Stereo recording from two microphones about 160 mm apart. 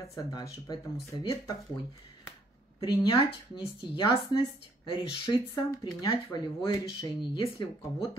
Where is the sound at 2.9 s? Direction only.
30° left (ahead or behind).